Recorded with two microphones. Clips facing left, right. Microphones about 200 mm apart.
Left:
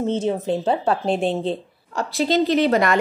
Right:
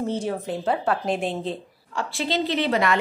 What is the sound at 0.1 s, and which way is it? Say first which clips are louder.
A woman's voice: left 5 dB; 25° left (ahead or behind).